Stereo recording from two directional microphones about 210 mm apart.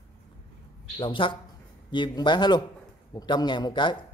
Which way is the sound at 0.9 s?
25° left (ahead or behind).